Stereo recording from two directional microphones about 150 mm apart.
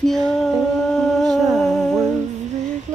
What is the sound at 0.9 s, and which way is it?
Music, centre (ahead or behind).